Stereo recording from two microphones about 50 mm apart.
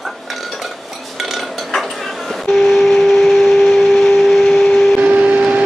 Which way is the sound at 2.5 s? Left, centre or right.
Centre.